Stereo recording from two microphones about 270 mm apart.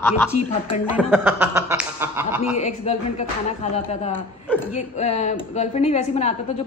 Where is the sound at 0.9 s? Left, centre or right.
Centre.